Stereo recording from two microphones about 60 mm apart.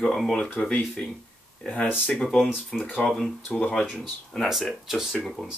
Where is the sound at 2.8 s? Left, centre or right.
Left.